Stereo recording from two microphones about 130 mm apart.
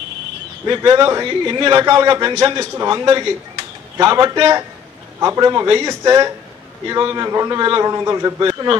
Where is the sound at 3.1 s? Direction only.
35° right (ahead or behind).